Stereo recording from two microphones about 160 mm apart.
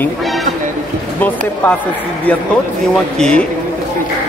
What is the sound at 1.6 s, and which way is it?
Speech, 10° left (ahead or behind).